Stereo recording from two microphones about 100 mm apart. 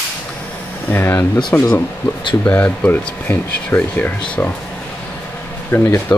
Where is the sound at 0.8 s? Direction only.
20° left (ahead or behind).